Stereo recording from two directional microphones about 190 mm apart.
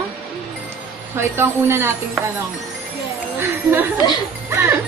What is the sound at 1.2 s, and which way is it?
Speech, 10° right (ahead or behind).